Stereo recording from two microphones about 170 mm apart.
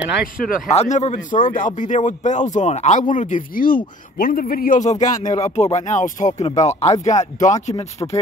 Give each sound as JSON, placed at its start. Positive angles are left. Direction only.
{"t": 0.7, "sound": "speech", "side_deg": 40}